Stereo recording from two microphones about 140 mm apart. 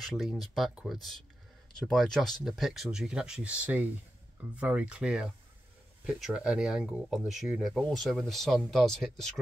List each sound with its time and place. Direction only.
0.0 s speech: centre (ahead or behind)